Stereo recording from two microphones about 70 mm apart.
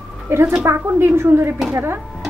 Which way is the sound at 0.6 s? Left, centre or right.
Right.